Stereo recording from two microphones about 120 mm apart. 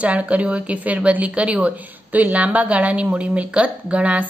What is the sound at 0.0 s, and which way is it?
A woman's voice, 10° right (ahead or behind).